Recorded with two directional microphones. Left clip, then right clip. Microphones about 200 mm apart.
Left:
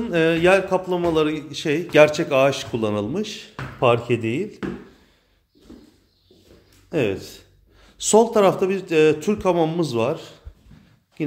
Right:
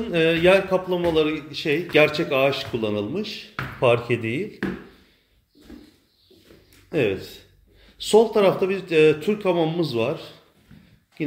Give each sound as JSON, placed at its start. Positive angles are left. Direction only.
{"t": 0.0, "sound": "a man's voice", "side_deg": 15}
{"t": 6.9, "sound": "speech", "side_deg": 10}